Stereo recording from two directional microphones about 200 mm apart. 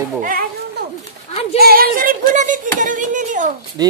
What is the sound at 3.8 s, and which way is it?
Speech, 20° right (ahead or behind).